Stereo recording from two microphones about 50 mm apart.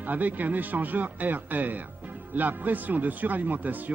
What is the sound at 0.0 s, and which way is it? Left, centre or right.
A man's voice, right.